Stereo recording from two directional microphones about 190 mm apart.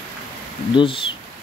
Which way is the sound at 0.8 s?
25° left (ahead or behind).